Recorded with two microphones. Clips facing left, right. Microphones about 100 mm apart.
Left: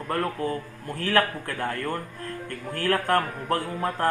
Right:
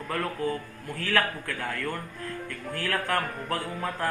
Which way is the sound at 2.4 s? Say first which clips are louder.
Left 8 dB; 45° left (ahead or behind).